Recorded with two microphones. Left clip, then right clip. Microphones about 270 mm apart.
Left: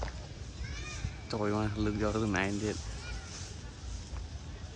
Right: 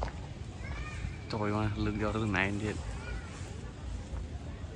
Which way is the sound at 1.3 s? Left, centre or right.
Centre.